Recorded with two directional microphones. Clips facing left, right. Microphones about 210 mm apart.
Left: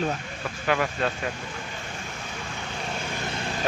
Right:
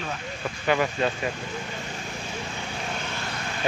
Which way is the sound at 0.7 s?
5° right (ahead or behind).